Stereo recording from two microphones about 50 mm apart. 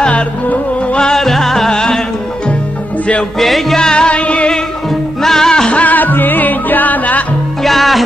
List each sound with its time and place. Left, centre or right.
0.9 s music: centre
1.2 s music: centre
3.3 s music: centre; by 4.6 s left
5.2 s music: centre
5.8 s music: left
7.6 s music: centre